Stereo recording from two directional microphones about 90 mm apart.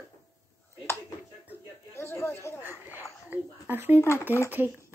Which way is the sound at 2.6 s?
20° right (ahead or behind).